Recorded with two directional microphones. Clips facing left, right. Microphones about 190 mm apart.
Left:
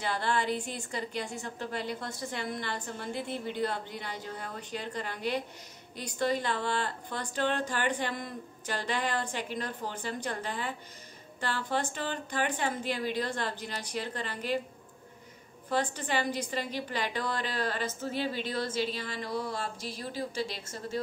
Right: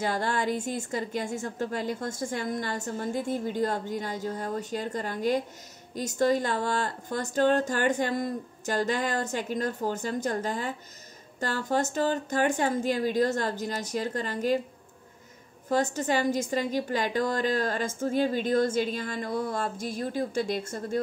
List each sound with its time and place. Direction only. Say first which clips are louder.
0.0 s a woman's voice: right 3 dB; 45° right (ahead or behind)
15.7 s a woman's voice: right 5 dB; 45° right (ahead or behind)